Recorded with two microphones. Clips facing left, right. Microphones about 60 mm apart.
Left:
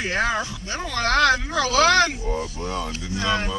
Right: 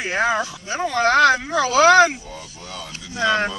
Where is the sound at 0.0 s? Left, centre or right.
Centre.